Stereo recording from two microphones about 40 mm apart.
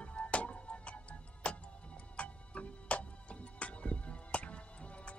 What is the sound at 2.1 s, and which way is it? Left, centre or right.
Music, left.